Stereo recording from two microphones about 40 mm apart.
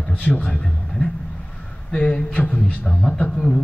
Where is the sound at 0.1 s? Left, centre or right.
Left.